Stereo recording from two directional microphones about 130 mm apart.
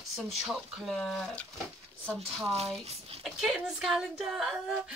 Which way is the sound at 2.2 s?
50° right (ahead or behind).